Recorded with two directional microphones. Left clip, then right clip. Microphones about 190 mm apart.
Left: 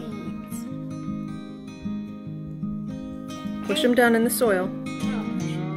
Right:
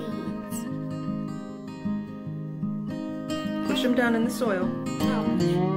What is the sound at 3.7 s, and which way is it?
Speech, 25° left (ahead or behind).